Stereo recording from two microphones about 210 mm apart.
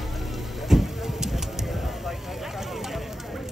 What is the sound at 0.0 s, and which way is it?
Vehicle, centre (ahead or behind).